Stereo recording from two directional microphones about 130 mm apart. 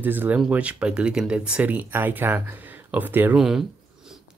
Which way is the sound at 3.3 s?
5° right (ahead or behind).